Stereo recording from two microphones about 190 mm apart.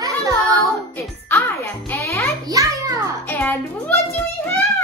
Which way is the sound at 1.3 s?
15° left (ahead or behind).